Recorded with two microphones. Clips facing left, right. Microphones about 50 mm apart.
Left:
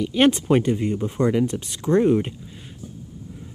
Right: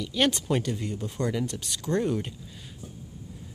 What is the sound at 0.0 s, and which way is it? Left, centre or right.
Speech, left.